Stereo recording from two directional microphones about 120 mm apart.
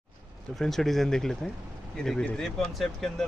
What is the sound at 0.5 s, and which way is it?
Speech, 5° left (ahead or behind).